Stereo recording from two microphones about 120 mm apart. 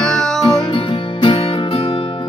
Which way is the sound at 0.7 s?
45° left (ahead or behind).